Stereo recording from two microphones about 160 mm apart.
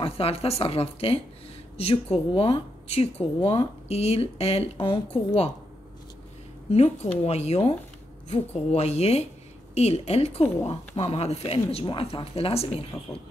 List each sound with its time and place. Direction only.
0.0 s speech: 35° left (ahead or behind)
6.7 s speech: 40° left (ahead or behind)